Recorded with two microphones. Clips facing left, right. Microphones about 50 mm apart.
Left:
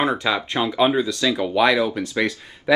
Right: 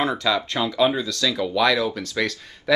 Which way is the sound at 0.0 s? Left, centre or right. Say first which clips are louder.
Left 1 dB; left.